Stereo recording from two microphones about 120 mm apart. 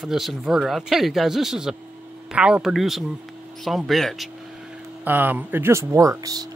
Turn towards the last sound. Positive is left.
turn(degrees=-30)  # may be behind; listen again after turning